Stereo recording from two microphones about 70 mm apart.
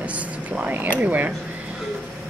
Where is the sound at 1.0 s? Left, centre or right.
Right.